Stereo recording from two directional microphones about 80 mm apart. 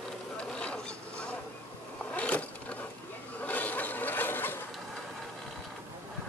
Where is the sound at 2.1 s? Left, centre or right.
Centre.